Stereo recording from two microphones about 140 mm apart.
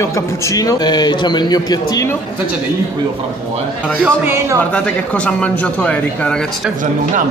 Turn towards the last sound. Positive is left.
turn(degrees=10)  # may be behind; listen again after turning